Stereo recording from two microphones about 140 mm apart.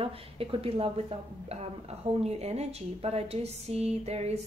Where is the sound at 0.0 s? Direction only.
40° right (ahead or behind).